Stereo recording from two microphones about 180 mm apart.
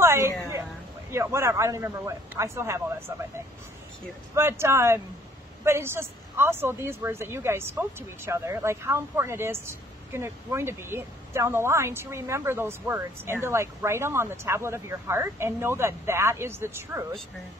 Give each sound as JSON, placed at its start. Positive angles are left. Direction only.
{"t": 0.0, "sound": "a sound", "side_deg": -15}
{"t": 1.1, "sound": "speech", "side_deg": -15}
{"t": 4.4, "sound": "speech", "side_deg": -15}